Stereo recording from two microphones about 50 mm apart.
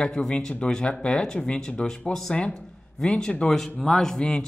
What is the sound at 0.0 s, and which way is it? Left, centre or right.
Speech, centre.